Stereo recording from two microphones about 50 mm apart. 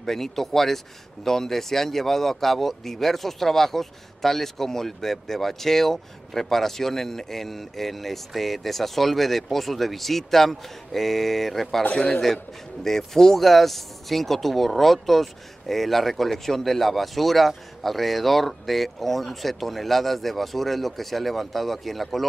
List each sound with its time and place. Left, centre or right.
0.0 s speech: centre
11.9 s a man's voice: centre
12.8 s speech: centre